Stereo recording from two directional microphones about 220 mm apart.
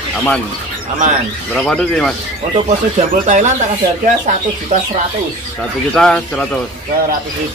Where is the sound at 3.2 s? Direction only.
35° right (ahead or behind).